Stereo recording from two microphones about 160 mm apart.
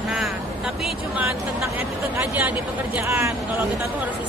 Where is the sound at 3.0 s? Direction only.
20° right (ahead or behind).